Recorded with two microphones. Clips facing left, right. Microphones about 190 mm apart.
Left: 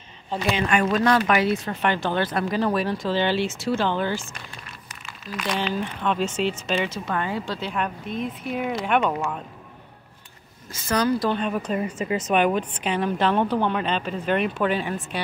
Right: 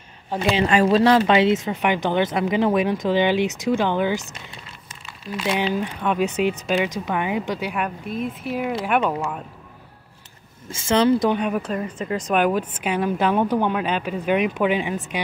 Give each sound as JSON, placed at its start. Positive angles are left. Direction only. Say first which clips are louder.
{"t": 0.4, "sound": "speech", "louder": "right 4 dB", "side_deg": -30}
{"t": 4.8, "sound": "crumpling", "louder": "right 5 dB", "side_deg": -25}
{"t": 5.5, "sound": "a woman's voice", "louder": "right 3 dB", "side_deg": -10}
{"t": 10.7, "sound": "speech", "louder": "right 5 dB", "side_deg": -25}
{"t": 11.2, "sound": "a woman's voice", "louder": "right 3 dB", "side_deg": -10}
{"t": 11.6, "sound": "a woman's voice", "louder": "left 1 dB", "side_deg": 10}